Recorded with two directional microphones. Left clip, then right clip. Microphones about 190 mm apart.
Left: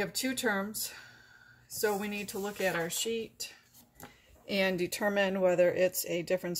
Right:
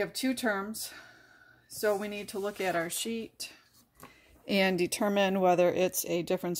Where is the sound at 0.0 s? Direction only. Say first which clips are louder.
Right 1 dB; 35° right (ahead or behind).